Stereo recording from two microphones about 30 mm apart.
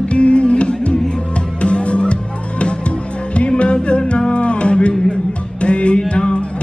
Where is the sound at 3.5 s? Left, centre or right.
Left.